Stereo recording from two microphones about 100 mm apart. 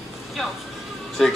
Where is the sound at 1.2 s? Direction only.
Centre (ahead or behind).